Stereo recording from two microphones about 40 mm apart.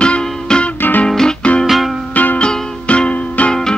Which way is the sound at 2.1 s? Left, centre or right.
Left.